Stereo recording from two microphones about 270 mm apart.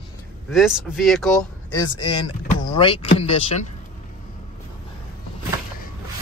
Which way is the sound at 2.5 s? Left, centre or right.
Centre.